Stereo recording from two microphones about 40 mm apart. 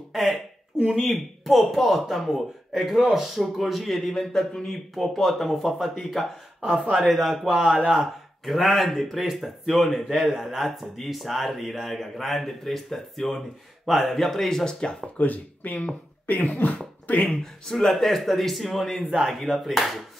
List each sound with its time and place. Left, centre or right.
0.1 s a sound: centre
0.8 s speech: centre
3.3 s speech: centre
4.1 s speech: centre
6.6 s speech: centre
7.1 s speech: centre
7.5 s speech: centre
8.5 s speech: centre
14.7 s speech: left
15.1 s speech: left
17.4 s speech: centre